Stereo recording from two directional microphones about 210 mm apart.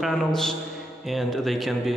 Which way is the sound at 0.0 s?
Centre (ahead or behind).